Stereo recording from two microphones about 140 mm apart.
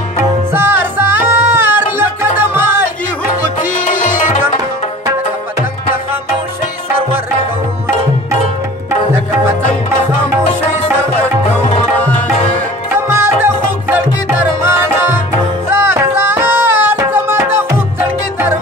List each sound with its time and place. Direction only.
0.5 s music: 15° right (ahead or behind)
3.8 s tabla: 70° left (ahead or behind)
12.9 s music: 15° right (ahead or behind)